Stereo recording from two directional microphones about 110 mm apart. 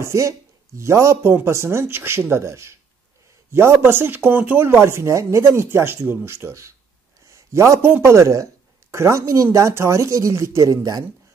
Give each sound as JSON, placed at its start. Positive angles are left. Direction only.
{"t": 0.0, "sound": "a man's voice", "side_deg": -30}